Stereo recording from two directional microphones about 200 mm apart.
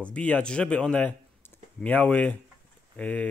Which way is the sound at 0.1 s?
5° left (ahead or behind).